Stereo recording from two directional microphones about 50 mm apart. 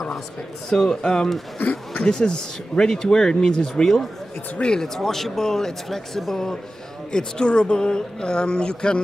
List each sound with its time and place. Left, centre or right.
0.7 s speech: centre